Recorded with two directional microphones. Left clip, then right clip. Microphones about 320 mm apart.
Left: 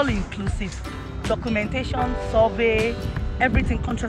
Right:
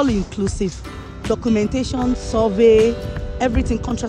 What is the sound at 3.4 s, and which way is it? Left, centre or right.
Speech, centre.